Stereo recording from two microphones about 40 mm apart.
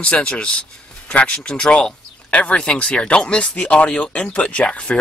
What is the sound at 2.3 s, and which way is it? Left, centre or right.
Speech, left.